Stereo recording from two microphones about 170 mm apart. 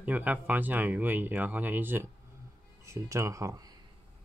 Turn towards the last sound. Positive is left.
turn(degrees=-20)  # may be behind; listen again after turning